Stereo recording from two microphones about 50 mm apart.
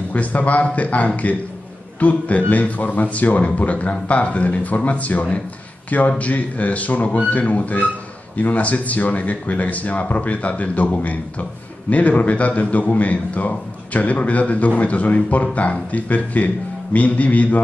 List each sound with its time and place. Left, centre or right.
0.1 s a man's voice: left